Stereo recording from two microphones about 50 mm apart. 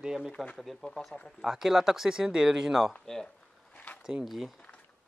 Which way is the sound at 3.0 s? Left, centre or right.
Centre.